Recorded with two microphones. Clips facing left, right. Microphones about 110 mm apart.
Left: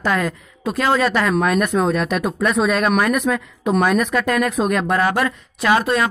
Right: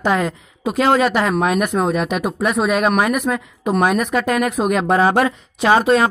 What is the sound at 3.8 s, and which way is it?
Speech, 15° right (ahead or behind).